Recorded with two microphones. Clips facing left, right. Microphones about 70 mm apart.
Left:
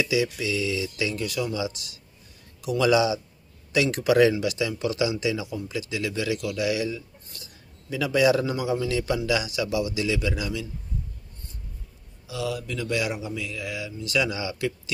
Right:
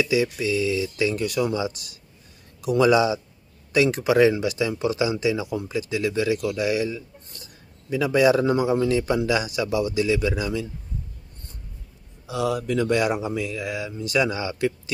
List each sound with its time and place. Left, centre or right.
0.0 s a man's voice: right
12.3 s speech: right